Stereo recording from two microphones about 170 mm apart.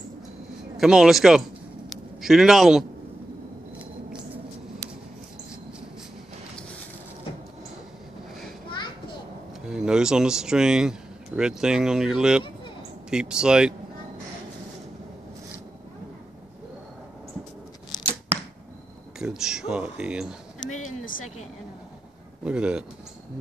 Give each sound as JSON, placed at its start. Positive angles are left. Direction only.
{"t": 0.7, "sound": "speech", "side_deg": -5}
{"t": 1.9, "sound": "a sound", "side_deg": 0}
{"t": 9.7, "sound": "speech", "side_deg": -5}
{"t": 19.1, "sound": "speech", "side_deg": -5}
{"t": 20.6, "sound": "a sound", "side_deg": 45}
{"t": 22.4, "sound": "speech", "side_deg": -5}